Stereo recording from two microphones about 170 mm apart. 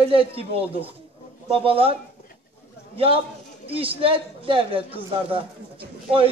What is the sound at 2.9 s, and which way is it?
A man's voice, 35° right (ahead or behind).